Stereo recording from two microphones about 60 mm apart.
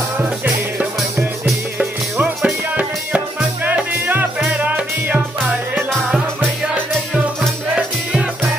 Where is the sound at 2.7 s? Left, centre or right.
Right.